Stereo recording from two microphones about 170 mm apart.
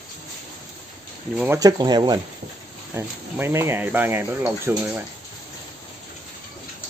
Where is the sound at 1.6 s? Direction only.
25° right (ahead or behind).